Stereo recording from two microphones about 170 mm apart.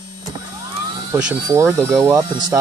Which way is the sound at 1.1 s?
15° right (ahead or behind).